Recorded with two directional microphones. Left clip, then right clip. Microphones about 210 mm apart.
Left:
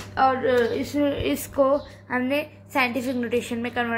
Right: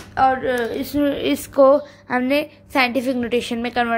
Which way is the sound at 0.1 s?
40° right (ahead or behind).